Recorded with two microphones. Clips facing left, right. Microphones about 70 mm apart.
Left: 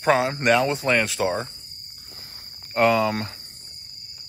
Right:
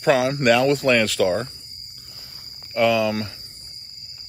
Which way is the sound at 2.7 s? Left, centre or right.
Left.